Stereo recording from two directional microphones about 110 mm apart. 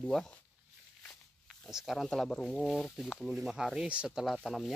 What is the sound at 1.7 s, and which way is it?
Speech, centre (ahead or behind).